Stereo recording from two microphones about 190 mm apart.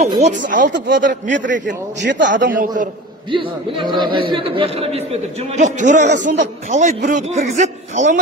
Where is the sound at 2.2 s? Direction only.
45° right (ahead or behind).